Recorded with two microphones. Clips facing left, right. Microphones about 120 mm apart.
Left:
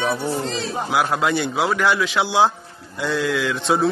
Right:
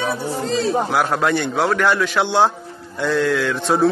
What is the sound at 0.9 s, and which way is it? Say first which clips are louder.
A man's voice: right 1 dB; centre (ahead or behind).